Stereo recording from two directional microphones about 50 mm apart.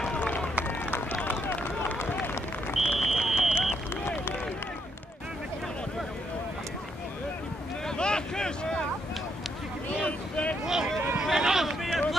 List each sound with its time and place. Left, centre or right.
0.7 s run: left
2.7 s vehicle: centre
8.0 s boat: centre
10.0 s vehicle: left
10.6 s a sound: centre